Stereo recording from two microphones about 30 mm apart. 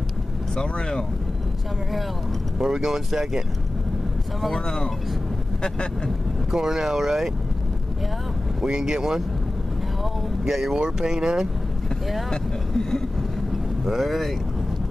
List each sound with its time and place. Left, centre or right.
0.6 s speech: left
2.6 s speech: centre
4.6 s speech: centre
6.5 s speech: centre
8.5 s speech: centre
10.4 s speech: centre
11.0 s speech: right
12.3 s speech: centre
13.5 s vehicle: centre